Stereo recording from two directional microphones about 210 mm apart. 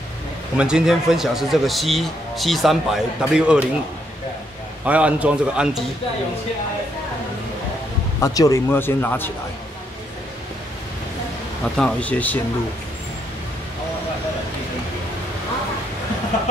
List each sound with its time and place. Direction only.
0.6 s a man's voice: 5° right (ahead or behind)
4.8 s a man's voice: 5° right (ahead or behind)
8.2 s speech: 15° left (ahead or behind)
11.7 s speech: 5° left (ahead or behind)